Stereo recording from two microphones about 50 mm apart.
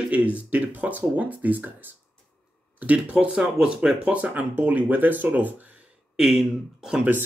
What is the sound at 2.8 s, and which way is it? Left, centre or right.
Speech, right.